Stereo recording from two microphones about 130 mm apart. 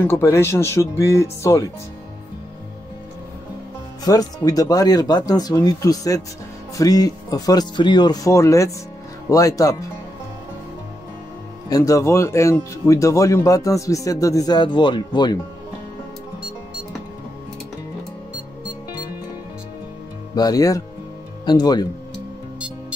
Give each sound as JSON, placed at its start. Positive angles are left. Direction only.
{"t": 0.0, "sound": "speech", "side_deg": 20}
{"t": 4.0, "sound": "speech", "side_deg": 30}
{"t": 11.7, "sound": "speech", "side_deg": 25}
{"t": 20.3, "sound": "speech", "side_deg": 30}